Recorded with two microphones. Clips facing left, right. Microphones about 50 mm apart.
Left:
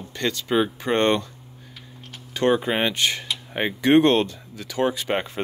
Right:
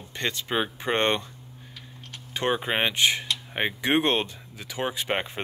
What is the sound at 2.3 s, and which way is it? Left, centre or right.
Speech, centre.